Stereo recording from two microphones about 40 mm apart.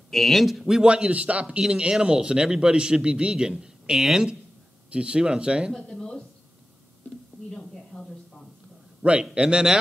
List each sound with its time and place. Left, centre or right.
0.1 s speech: centre
0.7 s speech: right
1.6 s speech: right
4.9 s speech: right
5.8 s speech: left
7.5 s a sound: centre
9.2 s speech: right